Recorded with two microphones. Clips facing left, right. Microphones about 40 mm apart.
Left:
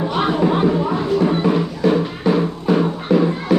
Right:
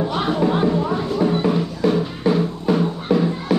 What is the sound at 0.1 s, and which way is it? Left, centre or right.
Music, left.